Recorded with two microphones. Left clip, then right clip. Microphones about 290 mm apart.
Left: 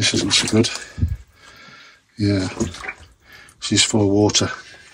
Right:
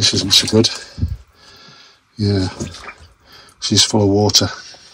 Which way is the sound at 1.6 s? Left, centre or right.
Centre.